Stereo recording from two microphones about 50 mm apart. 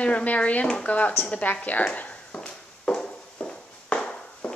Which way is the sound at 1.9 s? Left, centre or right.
Left.